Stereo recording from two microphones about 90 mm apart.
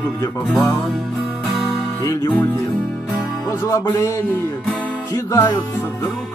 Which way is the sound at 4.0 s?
35° left (ahead or behind).